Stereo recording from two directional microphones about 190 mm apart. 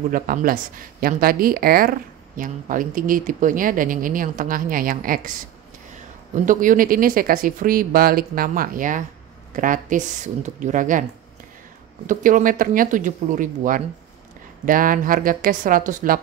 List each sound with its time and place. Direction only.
0.1 s speech: 45° right (ahead or behind)
6.3 s speech: 45° right (ahead or behind)
12.1 s speech: 45° right (ahead or behind)